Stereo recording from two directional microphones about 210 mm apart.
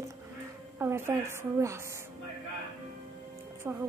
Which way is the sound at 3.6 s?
10° right (ahead or behind).